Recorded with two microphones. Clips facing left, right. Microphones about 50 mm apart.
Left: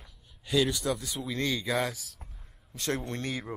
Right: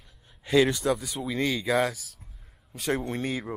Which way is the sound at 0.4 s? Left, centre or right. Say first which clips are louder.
Right 5 dB; right.